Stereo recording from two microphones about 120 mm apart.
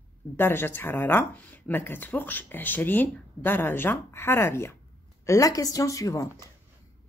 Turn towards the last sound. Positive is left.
turn(degrees=25)  # may be behind; listen again after turning